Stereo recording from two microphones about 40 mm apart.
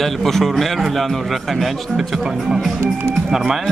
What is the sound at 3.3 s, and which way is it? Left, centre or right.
Speech, centre.